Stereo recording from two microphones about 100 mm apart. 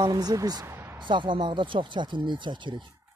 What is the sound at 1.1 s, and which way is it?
Speech, 55° right (ahead or behind).